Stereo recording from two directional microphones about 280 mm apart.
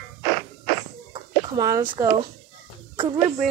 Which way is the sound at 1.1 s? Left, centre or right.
Centre.